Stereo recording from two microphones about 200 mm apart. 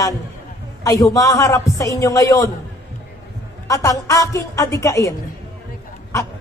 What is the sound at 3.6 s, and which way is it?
A man's voice, 15° left (ahead or behind).